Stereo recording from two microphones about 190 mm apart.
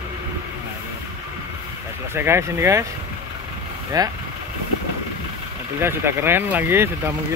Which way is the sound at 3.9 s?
20° right (ahead or behind).